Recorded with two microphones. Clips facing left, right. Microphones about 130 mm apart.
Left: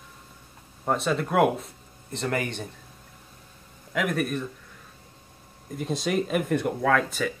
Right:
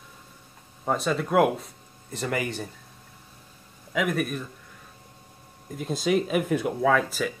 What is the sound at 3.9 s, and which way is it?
Speech, centre (ahead or behind).